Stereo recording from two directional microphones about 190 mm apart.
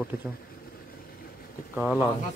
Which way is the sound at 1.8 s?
5° right (ahead or behind).